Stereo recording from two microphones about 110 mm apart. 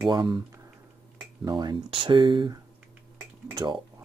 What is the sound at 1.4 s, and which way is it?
Speech, 45° right (ahead or behind).